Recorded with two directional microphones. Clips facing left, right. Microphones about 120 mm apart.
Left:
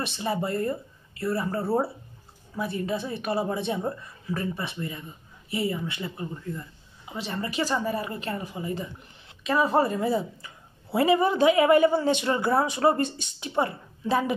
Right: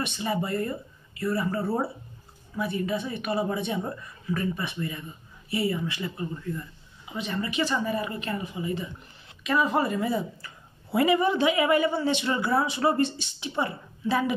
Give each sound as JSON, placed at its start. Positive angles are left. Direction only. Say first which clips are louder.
{"t": 0.0, "sound": "a woman's voice", "louder": "even", "side_deg": 35}